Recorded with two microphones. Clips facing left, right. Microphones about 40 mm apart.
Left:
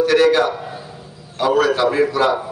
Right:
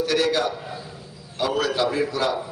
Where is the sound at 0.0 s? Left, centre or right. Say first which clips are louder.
Left 8 dB; left.